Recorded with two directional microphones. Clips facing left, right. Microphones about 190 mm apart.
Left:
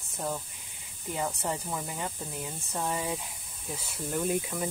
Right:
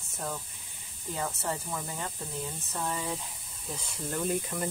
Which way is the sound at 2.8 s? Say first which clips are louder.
Left 2 dB; 15° left (ahead or behind).